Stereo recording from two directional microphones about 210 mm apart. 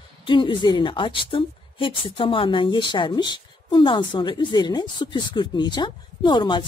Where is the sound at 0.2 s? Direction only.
25° left (ahead or behind).